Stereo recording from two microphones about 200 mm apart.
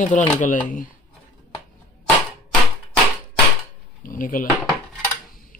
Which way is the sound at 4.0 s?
45° left (ahead or behind).